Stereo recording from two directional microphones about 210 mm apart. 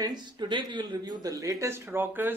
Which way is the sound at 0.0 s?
20° right (ahead or behind).